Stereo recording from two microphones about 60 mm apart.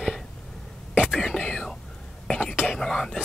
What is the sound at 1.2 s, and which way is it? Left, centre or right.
Whispering, centre.